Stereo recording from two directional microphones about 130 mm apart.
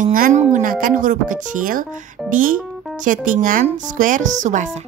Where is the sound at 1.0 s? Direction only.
85° right.